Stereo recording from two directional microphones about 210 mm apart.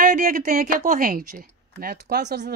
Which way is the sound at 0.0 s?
40° right (ahead or behind).